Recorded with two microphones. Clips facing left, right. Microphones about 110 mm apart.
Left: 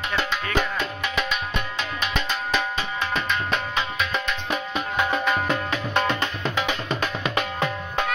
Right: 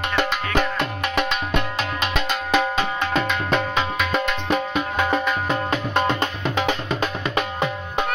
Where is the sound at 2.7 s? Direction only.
60° right (ahead or behind).